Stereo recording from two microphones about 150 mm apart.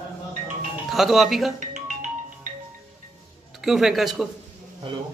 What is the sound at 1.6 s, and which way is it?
Music, 55° right (ahead or behind).